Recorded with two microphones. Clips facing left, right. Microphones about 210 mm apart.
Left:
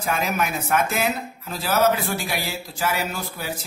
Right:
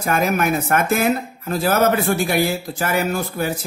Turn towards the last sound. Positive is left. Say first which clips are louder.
# right 8 dB
turn(degrees=-50)  # may be behind; listen again after turning